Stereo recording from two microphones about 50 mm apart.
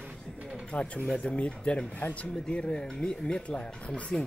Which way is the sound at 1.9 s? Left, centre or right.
Left.